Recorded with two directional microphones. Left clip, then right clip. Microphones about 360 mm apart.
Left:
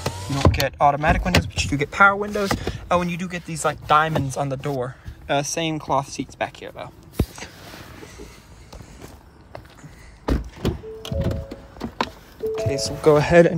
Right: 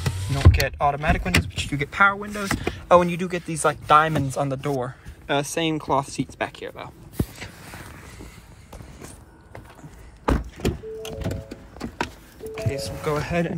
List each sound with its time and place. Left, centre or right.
0.0 s speech: centre
2.7 s speech: centre
11.1 s a sound: left
12.5 s speech: centre